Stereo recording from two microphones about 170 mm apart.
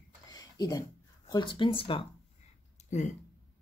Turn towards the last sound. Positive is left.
turn(degrees=45)  # may be behind; listen again after turning